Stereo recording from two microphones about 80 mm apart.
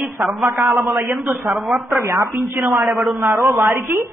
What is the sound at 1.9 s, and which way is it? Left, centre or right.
Speech, right.